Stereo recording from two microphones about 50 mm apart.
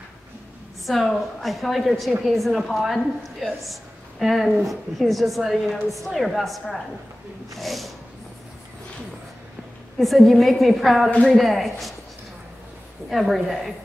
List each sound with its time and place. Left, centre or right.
0.8 s a woman's voice: centre
9.9 s a woman's voice: centre
11.1 s a woman's voice: left
11.3 s a woman's voice: centre
13.1 s a woman's voice: centre